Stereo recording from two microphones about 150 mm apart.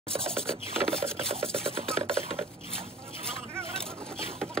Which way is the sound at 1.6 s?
40° right (ahead or behind).